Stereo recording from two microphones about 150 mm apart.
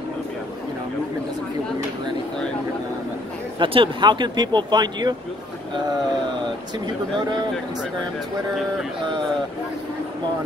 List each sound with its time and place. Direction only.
3.5 s speech: 35° right (ahead or behind)